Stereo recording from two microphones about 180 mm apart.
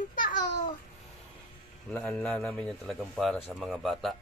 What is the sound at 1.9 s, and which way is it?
Speech, 5° left (ahead or behind).